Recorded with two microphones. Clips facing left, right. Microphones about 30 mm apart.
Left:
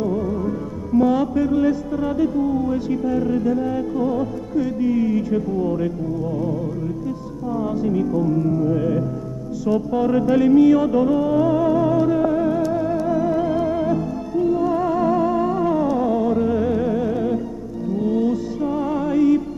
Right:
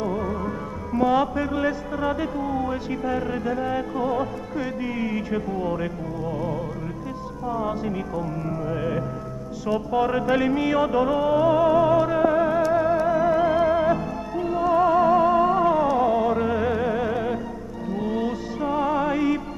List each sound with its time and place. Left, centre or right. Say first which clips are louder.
0.0 s music: left 4 dB; right
0.9 s a man's voice: left 3 dB; right
7.5 s a man's voice: left 6 dB; right
9.7 s music: left 3 dB; right